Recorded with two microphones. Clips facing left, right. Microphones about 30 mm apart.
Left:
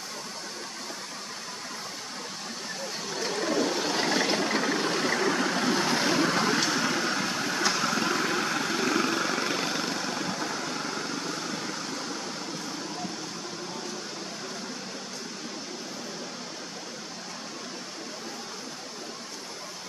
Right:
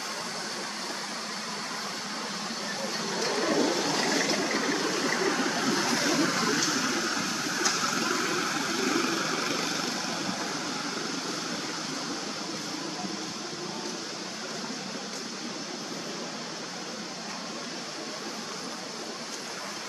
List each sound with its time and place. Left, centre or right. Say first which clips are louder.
3.2 s vehicle: right 1 dB; centre
3.5 s a sound: even; centre
4.9 s vehicle: left 1 dB; centre
8.4 s vehicle: left 1 dB; centre